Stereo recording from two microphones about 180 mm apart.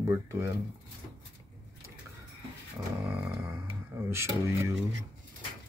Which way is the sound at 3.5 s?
15° right (ahead or behind).